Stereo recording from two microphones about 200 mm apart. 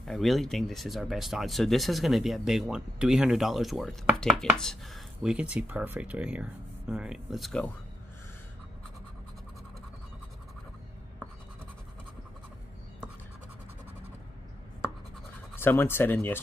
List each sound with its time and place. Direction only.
0.0 s speech: centre (ahead or behind)
15.5 s speech: 10° left (ahead or behind)